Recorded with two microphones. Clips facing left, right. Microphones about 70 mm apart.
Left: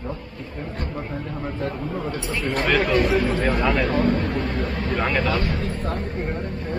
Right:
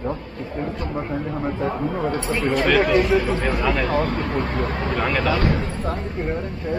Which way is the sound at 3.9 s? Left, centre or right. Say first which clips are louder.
Even; right.